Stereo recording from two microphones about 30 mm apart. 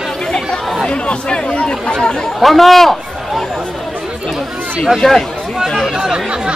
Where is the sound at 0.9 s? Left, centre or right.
Left.